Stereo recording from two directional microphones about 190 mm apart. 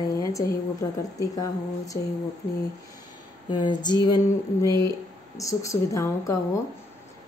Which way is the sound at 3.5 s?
25° left (ahead or behind).